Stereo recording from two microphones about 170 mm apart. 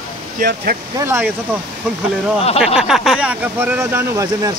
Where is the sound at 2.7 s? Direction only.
5° right (ahead or behind).